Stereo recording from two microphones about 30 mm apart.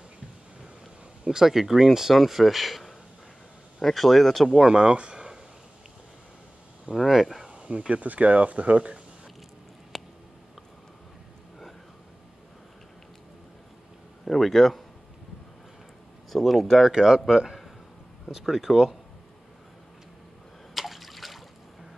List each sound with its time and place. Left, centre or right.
1.2 s speech: centre
3.8 s speech: centre
4.6 s speech: right
4.9 s speech: right
6.9 s speech: centre
7.3 s a sound: right
7.6 s speech: right
9.9 s a sound: centre
14.2 s speech: centre
16.3 s speech: centre
16.9 s speech: right
20.7 s water: centre